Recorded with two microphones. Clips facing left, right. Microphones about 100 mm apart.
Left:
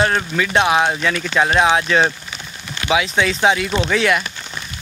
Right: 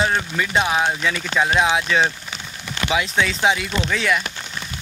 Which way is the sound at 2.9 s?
70° left (ahead or behind).